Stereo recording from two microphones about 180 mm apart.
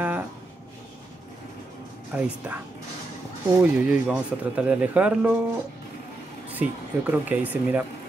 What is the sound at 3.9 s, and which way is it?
Speech, 5° right (ahead or behind).